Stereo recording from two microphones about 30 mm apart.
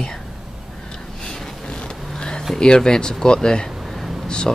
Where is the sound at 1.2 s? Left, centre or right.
Left.